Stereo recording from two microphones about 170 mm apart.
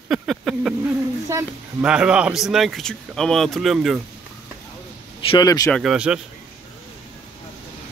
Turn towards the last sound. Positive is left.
turn(degrees=-5)  # may be behind; listen again after turning